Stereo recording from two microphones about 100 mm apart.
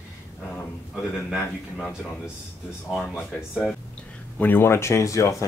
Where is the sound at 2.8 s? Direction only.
Centre (ahead or behind).